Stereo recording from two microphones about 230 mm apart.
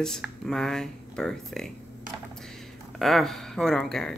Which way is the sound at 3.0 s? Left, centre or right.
Centre.